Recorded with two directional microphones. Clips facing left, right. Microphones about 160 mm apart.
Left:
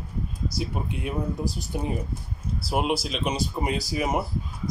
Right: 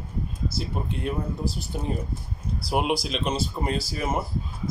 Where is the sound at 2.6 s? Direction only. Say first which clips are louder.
Right 1 dB; centre (ahead or behind).